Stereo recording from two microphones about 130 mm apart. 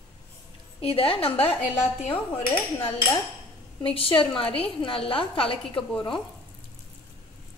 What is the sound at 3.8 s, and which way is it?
A woman's voice, 45° left (ahead or behind).